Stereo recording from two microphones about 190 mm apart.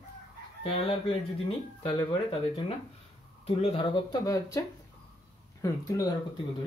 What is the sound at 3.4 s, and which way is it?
Speech, 30° left (ahead or behind).